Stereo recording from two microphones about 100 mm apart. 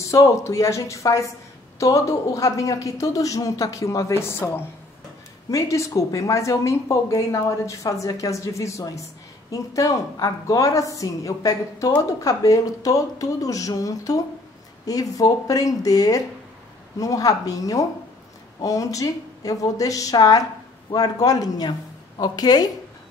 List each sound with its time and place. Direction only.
0.0 s a woman's voice: 30° left (ahead or behind)